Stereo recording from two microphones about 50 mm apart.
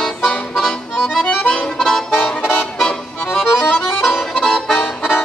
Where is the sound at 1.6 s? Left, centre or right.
Centre.